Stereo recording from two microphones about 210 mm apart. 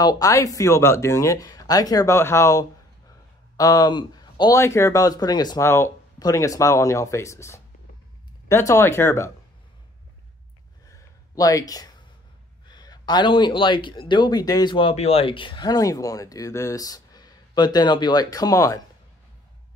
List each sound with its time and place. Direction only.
0.0 s speech: 15° left (ahead or behind)
10.9 s a sound: 15° left (ahead or behind)
12.6 s speech: 20° left (ahead or behind)